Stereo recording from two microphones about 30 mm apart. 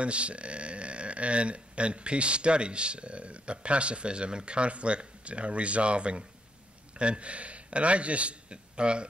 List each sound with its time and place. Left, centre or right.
0.0 s a man's voice: right